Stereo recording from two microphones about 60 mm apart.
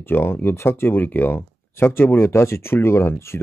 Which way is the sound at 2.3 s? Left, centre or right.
Left.